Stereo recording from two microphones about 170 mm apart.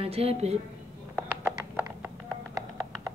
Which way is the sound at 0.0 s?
35° right (ahead or behind).